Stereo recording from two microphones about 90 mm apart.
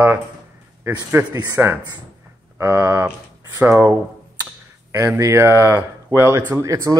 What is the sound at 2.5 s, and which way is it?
Speech, 35° right (ahead or behind).